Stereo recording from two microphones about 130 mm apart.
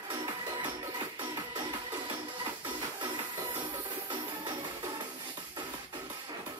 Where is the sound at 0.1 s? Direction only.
35° right (ahead or behind).